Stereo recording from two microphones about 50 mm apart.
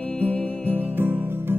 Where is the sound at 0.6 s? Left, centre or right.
Right.